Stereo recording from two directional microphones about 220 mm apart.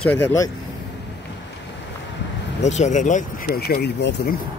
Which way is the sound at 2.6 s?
30° left (ahead or behind).